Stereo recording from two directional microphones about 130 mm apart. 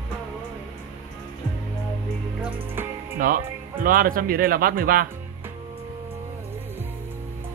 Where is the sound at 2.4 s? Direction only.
15° right (ahead or behind).